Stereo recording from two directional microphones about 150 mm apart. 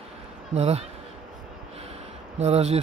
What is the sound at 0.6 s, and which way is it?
Speech, 45° right (ahead or behind).